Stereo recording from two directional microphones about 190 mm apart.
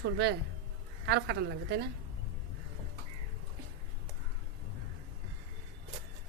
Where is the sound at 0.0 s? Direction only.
65° right (ahead or behind).